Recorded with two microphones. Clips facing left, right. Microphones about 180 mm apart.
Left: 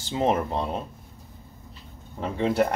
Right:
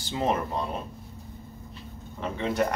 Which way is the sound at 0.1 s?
25° left (ahead or behind).